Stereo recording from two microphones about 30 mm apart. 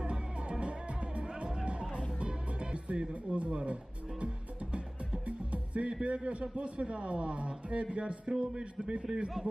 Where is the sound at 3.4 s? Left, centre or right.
Right.